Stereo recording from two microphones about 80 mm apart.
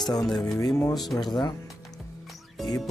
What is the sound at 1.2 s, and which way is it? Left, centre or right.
Speech, left.